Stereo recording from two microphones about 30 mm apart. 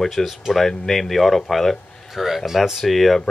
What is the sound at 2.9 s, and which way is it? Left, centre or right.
Speech, centre.